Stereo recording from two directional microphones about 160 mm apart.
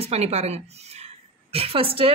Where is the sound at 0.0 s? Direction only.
40° right (ahead or behind).